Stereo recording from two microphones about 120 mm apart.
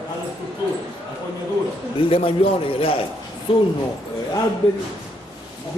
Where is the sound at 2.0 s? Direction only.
50° left (ahead or behind).